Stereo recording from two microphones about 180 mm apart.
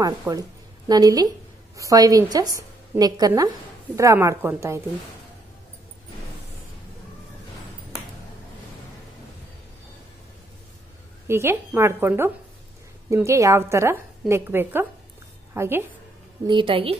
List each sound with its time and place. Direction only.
0.3 s a woman's voice: 20° right (ahead or behind)
11.2 s a woman's voice: 15° right (ahead or behind)
16.4 s a woman's voice: 30° right (ahead or behind)